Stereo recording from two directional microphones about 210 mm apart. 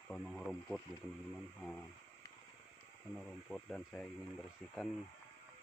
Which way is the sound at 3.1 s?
5° left (ahead or behind).